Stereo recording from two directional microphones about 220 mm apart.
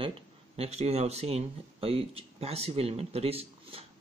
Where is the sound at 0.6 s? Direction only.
30° right (ahead or behind).